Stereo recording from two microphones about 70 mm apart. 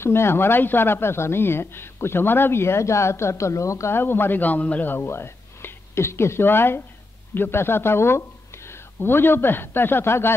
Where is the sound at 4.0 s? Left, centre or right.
Left.